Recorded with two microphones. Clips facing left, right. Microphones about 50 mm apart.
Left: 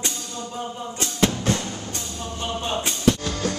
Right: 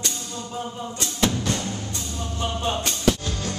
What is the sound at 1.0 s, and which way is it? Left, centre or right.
Music, left.